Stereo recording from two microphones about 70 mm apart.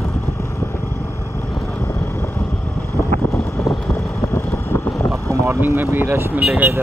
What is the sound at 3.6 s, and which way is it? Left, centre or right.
Vehicle, left.